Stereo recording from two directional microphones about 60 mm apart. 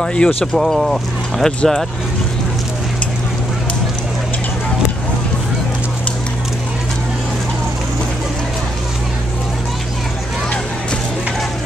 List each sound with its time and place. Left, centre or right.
0.0 s speech: centre
0.6 s speech: centre